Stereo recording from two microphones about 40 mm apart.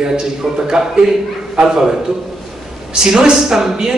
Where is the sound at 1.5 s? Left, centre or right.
Right.